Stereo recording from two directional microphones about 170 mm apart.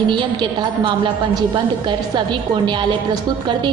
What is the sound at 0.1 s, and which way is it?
A woman's voice, 30° right (ahead or behind).